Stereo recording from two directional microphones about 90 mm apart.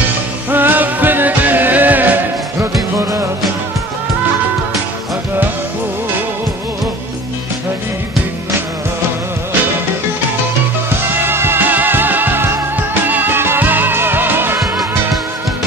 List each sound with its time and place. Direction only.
0.5 s music: 20° right (ahead or behind)
11.1 s music: 25° right (ahead or behind)